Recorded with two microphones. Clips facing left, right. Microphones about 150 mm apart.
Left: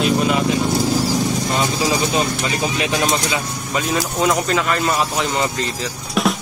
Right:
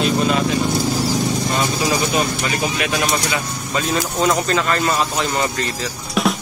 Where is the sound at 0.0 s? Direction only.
10° left (ahead or behind).